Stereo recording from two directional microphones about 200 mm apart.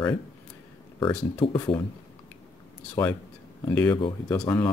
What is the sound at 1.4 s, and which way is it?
Speech, 25° left (ahead or behind).